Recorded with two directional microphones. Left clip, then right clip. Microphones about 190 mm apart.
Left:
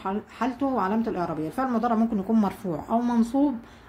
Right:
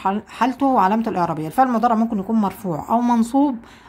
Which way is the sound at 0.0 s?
40° right (ahead or behind).